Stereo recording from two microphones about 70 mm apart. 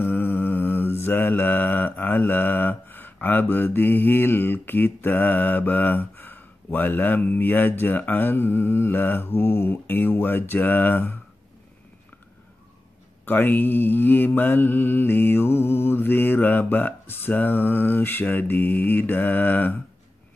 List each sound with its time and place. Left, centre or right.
0.0 s mantra: left
13.2 s mantra: left